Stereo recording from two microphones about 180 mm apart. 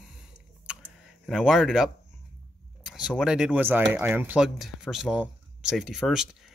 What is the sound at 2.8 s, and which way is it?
Speech, 5° right (ahead or behind).